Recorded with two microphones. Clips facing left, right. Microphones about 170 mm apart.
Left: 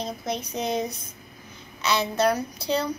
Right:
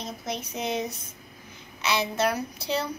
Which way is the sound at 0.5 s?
35° left (ahead or behind).